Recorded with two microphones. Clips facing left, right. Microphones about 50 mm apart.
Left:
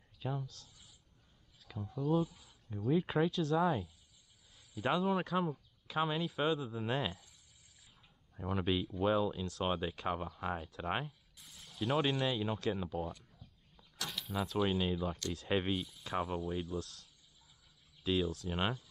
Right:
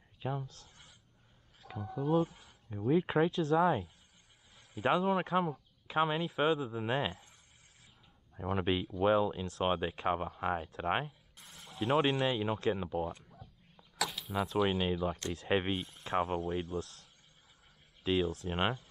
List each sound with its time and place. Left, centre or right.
0.2 s speech: right
1.9 s speech: right
2.2 s a sound: right
2.8 s speech: right
4.6 s a sound: right
4.9 s speech: right
8.4 s speech: right
13.2 s bird: centre
14.1 s a sound: centre
14.4 s speech: right
15.0 s speech: right